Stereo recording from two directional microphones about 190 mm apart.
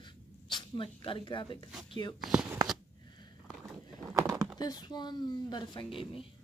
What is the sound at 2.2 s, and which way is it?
Speech, 5° right (ahead or behind).